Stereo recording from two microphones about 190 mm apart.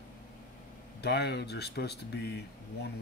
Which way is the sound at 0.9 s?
60° left (ahead or behind).